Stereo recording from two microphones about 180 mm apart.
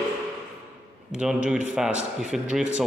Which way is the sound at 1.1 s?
5° right (ahead or behind).